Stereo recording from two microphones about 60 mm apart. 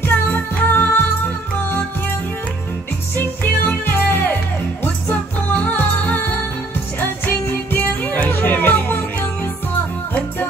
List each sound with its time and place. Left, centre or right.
0.0 s music: left
3.6 s music: left